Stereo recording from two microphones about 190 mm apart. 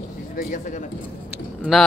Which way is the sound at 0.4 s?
45° left (ahead or behind).